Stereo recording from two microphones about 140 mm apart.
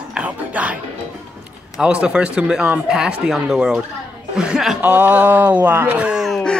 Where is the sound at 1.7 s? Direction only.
5° right (ahead or behind).